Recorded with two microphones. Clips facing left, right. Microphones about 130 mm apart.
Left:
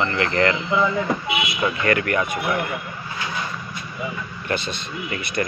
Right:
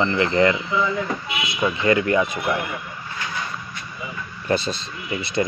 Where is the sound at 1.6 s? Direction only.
20° right (ahead or behind).